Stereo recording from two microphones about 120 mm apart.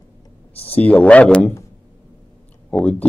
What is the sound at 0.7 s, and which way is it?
Speech, 10° left (ahead or behind).